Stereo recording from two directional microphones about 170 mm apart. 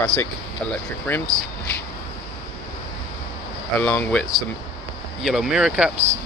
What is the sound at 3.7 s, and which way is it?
Speech, 10° left (ahead or behind).